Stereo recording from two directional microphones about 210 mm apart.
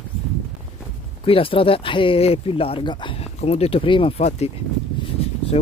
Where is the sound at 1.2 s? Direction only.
25° left (ahead or behind).